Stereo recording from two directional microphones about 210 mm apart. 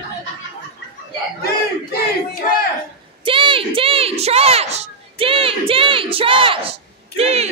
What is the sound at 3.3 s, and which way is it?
Speech, 25° right (ahead or behind).